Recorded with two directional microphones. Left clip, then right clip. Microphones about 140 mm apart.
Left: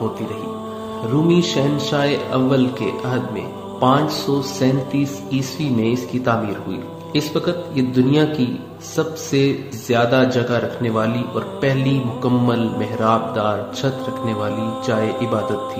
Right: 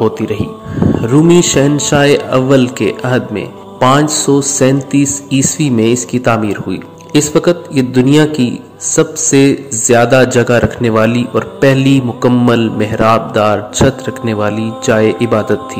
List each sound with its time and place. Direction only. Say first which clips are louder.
1.0 s speech: right 8 dB; 65° right (ahead or behind)